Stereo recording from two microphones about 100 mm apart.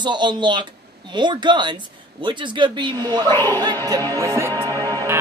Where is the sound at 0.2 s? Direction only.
50° right (ahead or behind).